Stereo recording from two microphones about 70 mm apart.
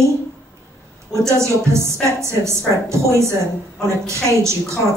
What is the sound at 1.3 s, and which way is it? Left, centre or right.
A woman's voice, right.